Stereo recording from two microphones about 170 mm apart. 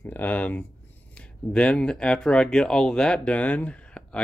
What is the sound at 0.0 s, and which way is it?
Speech, 10° left (ahead or behind).